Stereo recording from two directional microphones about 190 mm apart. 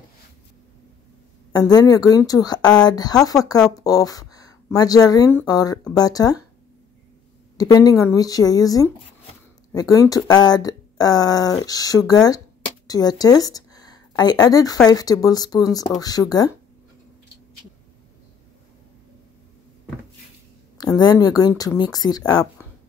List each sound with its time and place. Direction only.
1.7 s speech: 20° left (ahead or behind)
7.5 s a woman's voice: 20° left (ahead or behind)
20.7 s speech: 20° left (ahead or behind)